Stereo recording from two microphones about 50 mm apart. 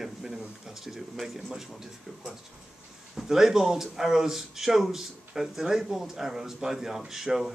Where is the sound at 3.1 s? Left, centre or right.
Centre.